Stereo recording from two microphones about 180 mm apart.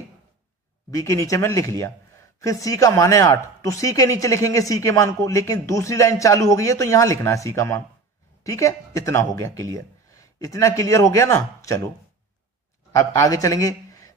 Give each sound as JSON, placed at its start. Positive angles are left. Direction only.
{"t": 0.9, "sound": "a man's voice", "side_deg": 20}
{"t": 12.9, "sound": "a man's voice", "side_deg": 15}